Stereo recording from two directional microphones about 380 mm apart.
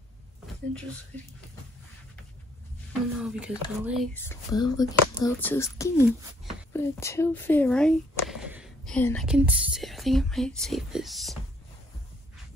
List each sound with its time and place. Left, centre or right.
3.2 s speech: centre